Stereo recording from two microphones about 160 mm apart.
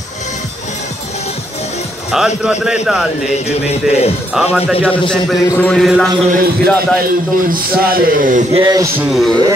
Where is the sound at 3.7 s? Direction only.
40° left (ahead or behind).